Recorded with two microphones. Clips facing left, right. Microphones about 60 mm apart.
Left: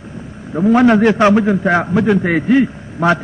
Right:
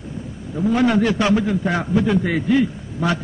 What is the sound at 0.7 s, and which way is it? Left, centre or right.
Speech, left.